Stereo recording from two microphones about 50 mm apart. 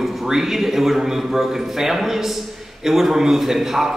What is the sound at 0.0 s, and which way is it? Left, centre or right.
A man's voice, centre.